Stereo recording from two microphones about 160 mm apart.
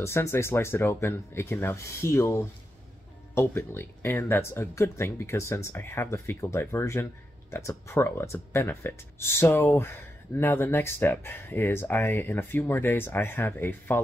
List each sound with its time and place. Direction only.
0.0 s speech: 15° left (ahead or behind)